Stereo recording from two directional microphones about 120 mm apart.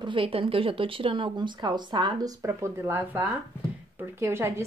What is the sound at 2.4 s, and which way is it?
A woman's voice, 20° right (ahead or behind).